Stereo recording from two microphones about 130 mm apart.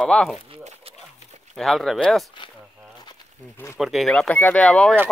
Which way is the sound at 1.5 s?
Centre (ahead or behind).